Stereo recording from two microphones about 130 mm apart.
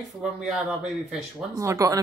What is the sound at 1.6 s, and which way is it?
Speech, 25° right (ahead or behind).